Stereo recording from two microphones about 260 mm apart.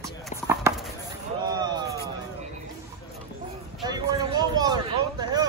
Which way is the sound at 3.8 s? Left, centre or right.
Centre.